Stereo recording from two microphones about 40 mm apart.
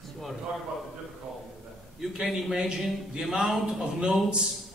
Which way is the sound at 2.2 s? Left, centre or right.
Centre.